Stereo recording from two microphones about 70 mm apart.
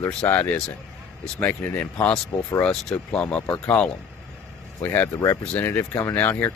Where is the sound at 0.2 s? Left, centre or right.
Left.